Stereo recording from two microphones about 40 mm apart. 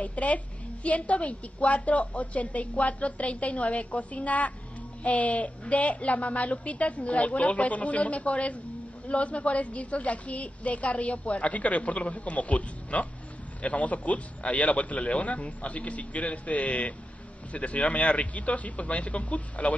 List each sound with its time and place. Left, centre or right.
0.0 s a woman's voice: left